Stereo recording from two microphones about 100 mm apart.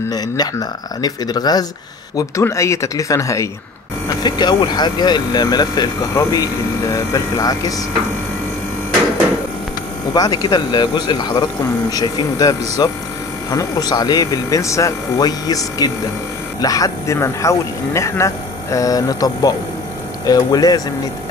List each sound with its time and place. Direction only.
0.1 s speech: 40° left (ahead or behind)
2.4 s speech: 30° left (ahead or behind)
4.2 s speech: 50° left (ahead or behind)
10.1 s speech: 40° left (ahead or behind)